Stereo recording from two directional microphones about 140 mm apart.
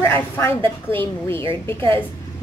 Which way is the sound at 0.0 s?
15° left (ahead or behind).